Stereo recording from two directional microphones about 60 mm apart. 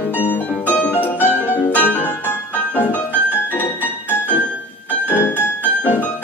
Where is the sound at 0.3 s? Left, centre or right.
Left.